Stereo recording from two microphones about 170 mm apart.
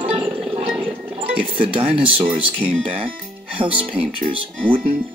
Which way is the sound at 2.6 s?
30° right (ahead or behind).